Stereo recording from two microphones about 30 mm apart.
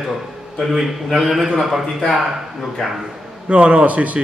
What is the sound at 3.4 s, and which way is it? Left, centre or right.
Speech, right.